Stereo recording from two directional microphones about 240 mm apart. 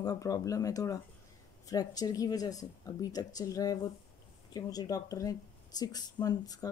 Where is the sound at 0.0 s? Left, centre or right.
Centre.